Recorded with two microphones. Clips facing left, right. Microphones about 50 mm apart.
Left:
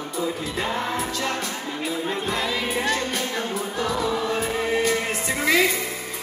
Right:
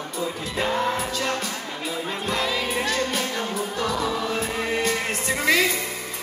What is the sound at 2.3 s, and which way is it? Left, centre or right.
Music, centre.